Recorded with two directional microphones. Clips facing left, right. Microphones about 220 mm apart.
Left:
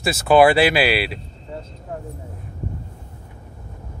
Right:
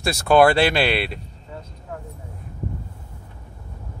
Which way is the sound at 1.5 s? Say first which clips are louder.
Left 4 dB; 30° left (ahead or behind).